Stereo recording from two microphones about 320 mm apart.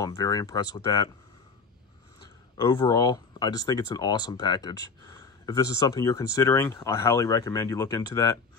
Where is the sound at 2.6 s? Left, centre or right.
Centre.